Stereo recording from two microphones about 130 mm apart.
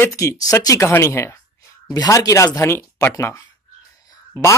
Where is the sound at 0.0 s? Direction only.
20° left (ahead or behind).